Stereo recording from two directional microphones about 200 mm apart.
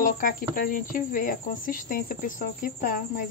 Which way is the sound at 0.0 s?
45° left (ahead or behind).